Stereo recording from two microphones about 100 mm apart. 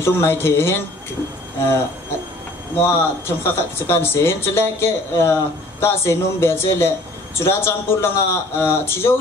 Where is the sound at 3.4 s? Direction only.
25° left (ahead or behind).